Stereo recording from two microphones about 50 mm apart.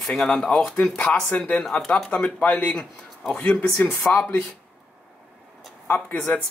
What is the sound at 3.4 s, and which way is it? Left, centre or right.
Speech, left.